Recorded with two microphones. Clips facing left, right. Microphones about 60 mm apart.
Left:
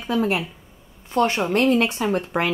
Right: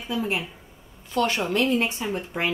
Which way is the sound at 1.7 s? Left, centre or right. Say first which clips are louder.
Left 5 dB; left.